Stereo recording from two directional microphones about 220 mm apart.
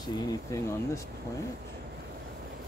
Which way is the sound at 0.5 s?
15° left (ahead or behind).